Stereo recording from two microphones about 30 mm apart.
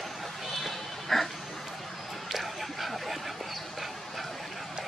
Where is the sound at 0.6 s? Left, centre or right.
Centre.